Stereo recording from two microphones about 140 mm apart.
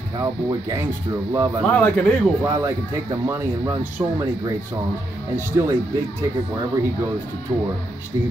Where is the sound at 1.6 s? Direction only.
10° left (ahead or behind).